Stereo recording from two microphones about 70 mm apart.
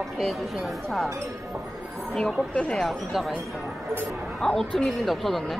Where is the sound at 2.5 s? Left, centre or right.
Centre.